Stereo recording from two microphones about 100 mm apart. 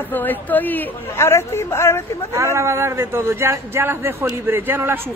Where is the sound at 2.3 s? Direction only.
30° right (ahead or behind).